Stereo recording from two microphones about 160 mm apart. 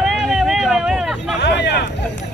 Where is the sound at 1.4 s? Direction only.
90° left.